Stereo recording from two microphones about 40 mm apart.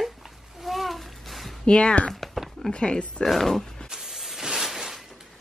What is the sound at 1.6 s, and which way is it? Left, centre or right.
Speech, left.